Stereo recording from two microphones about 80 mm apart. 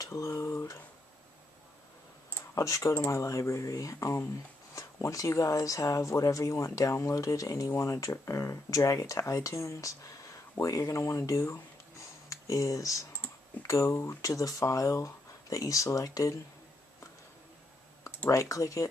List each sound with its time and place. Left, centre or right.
0.0 s speech: left
2.5 s speech: left
18.3 s speech: left